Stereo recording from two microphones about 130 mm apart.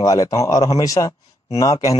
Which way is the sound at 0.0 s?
25° left (ahead or behind).